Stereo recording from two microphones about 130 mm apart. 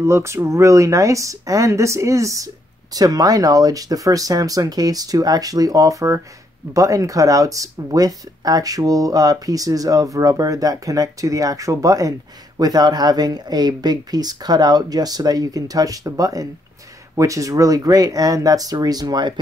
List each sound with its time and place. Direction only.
0.0 s speech: 20° right (ahead or behind)